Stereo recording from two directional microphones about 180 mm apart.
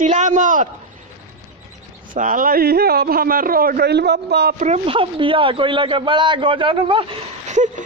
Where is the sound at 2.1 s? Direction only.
50° right (ahead or behind); by 4.6 s 65° right (ahead or behind).